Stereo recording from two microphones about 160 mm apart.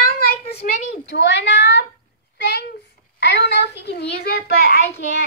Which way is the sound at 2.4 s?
90° left.